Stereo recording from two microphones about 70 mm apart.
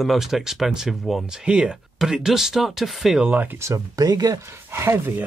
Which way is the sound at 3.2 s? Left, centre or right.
Right.